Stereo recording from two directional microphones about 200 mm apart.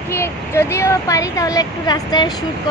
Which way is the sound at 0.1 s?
15° left (ahead or behind).